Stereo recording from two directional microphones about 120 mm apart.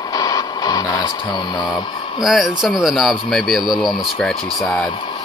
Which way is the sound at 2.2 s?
5° right (ahead or behind).